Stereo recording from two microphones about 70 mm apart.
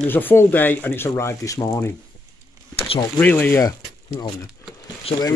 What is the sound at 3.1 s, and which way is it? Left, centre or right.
Speech, left.